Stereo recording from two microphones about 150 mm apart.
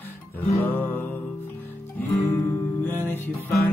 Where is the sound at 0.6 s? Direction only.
15° left (ahead or behind).